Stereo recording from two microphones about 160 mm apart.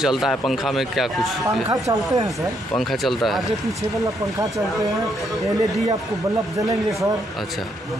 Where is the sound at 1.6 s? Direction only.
20° right (ahead or behind).